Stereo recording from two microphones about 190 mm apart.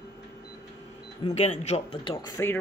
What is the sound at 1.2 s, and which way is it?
Speech, 35° left (ahead or behind).